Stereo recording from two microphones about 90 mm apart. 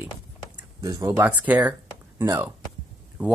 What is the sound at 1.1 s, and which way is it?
Speech, 15° right (ahead or behind).